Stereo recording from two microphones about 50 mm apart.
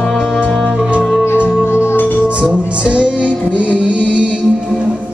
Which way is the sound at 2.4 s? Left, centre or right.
Right.